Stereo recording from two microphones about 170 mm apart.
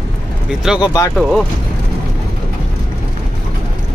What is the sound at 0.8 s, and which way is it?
Speech, 20° left (ahead or behind).